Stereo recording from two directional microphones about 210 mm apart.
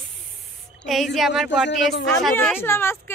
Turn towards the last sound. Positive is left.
turn(degrees=10)  # may be behind; listen again after turning